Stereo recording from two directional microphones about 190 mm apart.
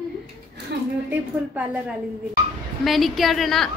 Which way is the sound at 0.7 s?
60° right (ahead or behind).